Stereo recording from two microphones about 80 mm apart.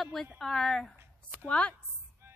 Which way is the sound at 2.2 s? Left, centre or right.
Right.